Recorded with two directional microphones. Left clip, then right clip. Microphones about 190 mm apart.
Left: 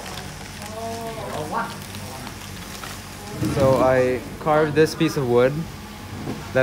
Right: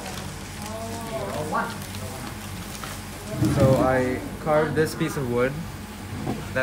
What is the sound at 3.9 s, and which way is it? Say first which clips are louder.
Speech: left 4 dB; 45° left (ahead or behind).